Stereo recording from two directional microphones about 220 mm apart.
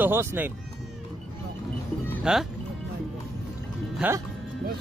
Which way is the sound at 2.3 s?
5° right (ahead or behind).